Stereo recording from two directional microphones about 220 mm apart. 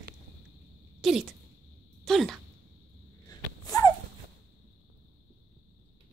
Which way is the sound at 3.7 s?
15° left (ahead or behind).